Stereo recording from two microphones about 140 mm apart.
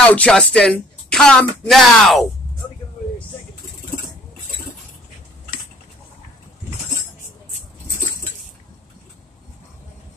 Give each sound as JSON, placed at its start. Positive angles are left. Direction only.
{"t": 0.0, "sound": "speech", "side_deg": 10}